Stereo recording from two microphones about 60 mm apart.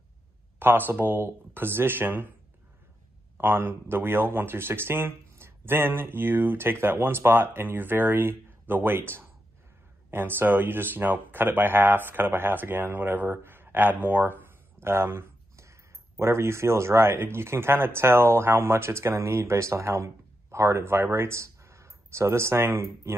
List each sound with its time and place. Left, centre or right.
0.6 s speech: right
3.3 s speech: right
14.0 s a sound: right
16.2 s speech: right